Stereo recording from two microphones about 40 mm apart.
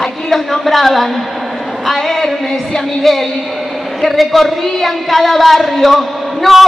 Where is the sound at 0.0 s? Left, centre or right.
Centre.